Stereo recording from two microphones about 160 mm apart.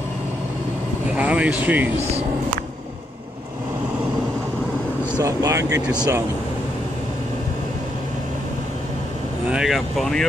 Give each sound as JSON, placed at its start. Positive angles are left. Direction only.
{"t": 1.1, "sound": "speech", "side_deg": -10}
{"t": 5.2, "sound": "speech", "side_deg": -20}
{"t": 9.5, "sound": "speech", "side_deg": -5}